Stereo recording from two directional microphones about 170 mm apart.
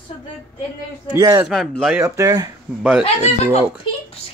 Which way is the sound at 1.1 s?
20° right (ahead or behind).